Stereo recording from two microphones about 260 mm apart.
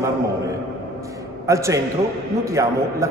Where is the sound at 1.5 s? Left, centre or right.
Centre.